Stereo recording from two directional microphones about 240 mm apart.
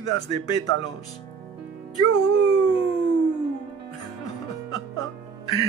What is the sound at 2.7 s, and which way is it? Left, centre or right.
Howl, left.